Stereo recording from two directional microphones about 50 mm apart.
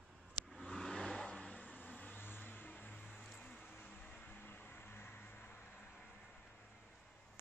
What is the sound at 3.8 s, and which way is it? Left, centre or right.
Vehicle, left.